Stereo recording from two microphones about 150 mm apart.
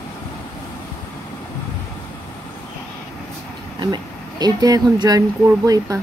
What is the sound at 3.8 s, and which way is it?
Speech, 30° right (ahead or behind).